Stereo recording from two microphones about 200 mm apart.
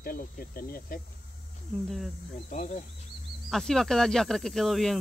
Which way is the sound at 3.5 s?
Centre (ahead or behind).